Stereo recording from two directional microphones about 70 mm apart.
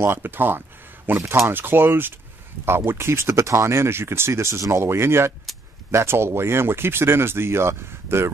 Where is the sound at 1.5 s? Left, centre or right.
Right.